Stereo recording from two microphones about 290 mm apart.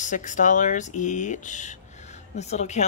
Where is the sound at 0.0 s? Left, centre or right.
Left.